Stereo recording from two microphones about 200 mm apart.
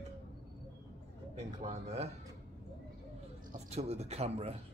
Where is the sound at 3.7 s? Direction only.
35° right (ahead or behind).